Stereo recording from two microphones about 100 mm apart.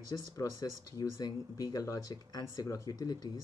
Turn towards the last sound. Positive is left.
turn(degrees=40)  # may be behind; listen again after turning